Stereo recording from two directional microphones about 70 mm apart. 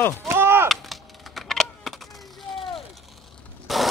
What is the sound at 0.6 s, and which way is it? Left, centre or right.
Computer keyboard, centre.